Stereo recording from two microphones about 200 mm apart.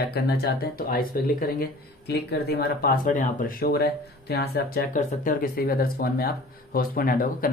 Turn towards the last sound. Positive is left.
turn(degrees=45)  # may be behind; listen again after turning